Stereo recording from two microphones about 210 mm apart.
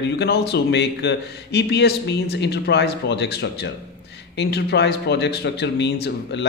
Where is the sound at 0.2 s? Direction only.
50° left (ahead or behind).